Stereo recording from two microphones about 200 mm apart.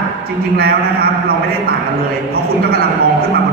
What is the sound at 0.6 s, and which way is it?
Speech, 50° right (ahead or behind).